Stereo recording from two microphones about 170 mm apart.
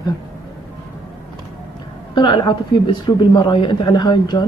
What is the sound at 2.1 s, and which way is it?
A woman's voice, 25° left (ahead or behind).